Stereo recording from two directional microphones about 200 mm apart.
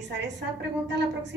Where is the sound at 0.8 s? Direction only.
60° right (ahead or behind).